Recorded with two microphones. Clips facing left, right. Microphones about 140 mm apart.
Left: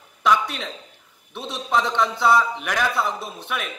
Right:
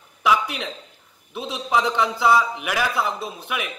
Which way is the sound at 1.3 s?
Centre (ahead or behind).